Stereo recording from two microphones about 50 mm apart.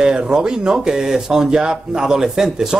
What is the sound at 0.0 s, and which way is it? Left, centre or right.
Speech, centre.